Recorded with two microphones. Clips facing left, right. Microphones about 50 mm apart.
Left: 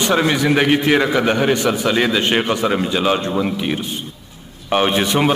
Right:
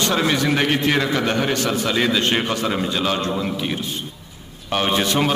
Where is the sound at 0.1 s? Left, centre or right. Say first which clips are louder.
Left 6 dB; centre.